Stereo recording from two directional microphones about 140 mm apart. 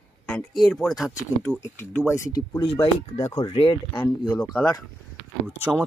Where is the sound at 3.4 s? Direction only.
45° left (ahead or behind).